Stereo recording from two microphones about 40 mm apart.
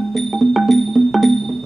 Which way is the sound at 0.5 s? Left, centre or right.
Centre.